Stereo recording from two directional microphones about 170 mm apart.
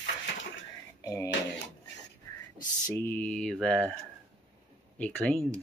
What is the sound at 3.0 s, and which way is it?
Mantra, 10° left (ahead or behind).